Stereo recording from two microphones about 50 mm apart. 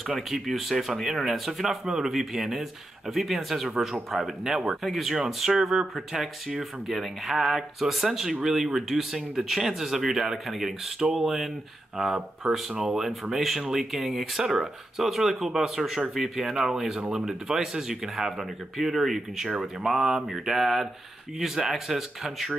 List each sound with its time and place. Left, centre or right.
0.0 s speech: centre